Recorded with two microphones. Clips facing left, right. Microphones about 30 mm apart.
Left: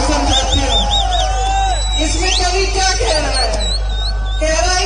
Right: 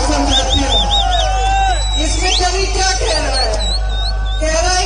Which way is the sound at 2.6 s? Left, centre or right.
Centre.